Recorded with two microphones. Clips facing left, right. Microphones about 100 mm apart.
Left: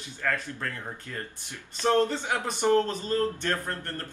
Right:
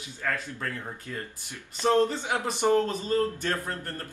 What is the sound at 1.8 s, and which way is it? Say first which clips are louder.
Speech: right 1 dB; 15° right (ahead or behind).